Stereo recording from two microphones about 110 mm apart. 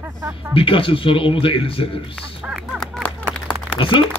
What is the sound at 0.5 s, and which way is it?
A man's voice, 55° left (ahead or behind).